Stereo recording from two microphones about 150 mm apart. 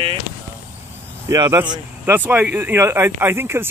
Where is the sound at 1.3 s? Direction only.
20° right (ahead or behind).